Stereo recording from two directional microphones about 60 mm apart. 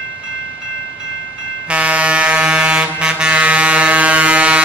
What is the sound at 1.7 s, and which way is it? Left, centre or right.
Air horn, right.